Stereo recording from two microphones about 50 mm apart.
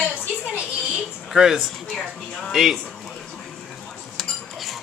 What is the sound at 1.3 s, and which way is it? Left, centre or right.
Speech, centre.